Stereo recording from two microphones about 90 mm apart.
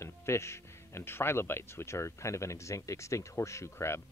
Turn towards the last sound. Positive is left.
turn(degrees=30)  # may be behind; listen again after turning